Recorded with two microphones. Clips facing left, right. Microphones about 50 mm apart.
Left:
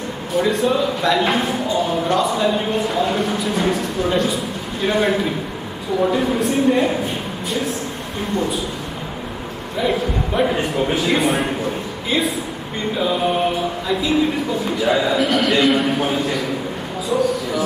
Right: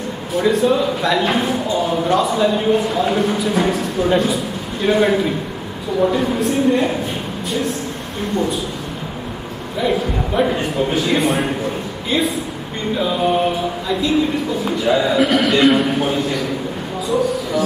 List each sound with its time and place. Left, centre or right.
0.3 s speech: centre
8.4 s speech: centre
9.8 s speech: centre